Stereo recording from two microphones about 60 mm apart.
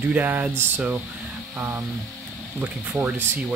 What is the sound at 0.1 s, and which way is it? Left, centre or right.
Speech, right.